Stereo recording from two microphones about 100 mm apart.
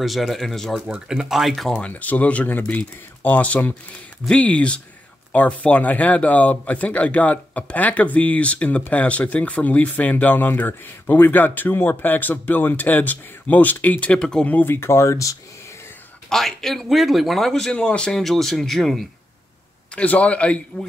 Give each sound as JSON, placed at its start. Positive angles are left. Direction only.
{"t": 0.0, "sound": "speech", "side_deg": 0}
{"t": 1.7, "sound": "speech", "side_deg": 15}
{"t": 16.3, "sound": "speech", "side_deg": 5}
{"t": 20.0, "sound": "speech", "side_deg": 15}